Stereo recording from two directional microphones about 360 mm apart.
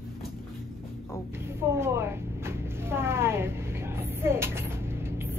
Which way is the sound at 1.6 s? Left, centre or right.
Centre.